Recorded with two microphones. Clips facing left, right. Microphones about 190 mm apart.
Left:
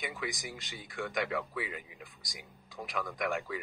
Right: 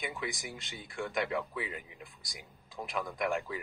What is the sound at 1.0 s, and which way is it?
Speech, 35° right (ahead or behind).